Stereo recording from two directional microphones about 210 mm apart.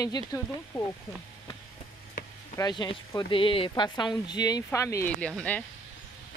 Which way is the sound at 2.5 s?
20° left (ahead or behind).